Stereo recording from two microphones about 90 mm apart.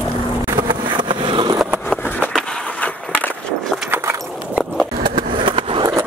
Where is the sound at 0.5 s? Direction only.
60° right (ahead or behind).